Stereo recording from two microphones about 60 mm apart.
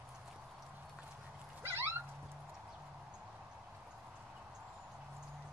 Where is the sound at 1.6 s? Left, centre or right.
Right.